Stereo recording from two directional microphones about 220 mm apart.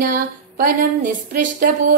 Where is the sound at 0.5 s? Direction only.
40° right (ahead or behind).